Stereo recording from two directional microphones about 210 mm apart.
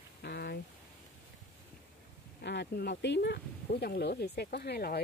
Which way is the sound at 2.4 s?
55° left (ahead or behind).